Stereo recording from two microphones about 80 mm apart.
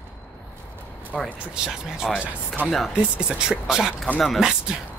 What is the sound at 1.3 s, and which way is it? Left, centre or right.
Speech, centre.